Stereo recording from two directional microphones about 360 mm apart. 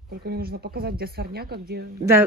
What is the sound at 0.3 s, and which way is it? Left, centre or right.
Speech, right.